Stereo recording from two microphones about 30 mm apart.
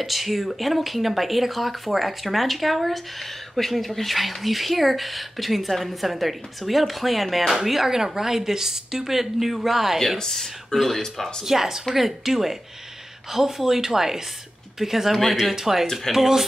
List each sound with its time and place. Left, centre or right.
0.0 s a woman's voice: centre
10.1 s speech: centre
10.4 s speech: centre
11.4 s a woman's voice: centre